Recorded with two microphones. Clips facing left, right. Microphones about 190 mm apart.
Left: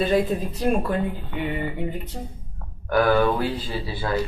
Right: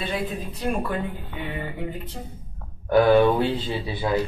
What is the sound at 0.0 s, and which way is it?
Speech, 40° left (ahead or behind).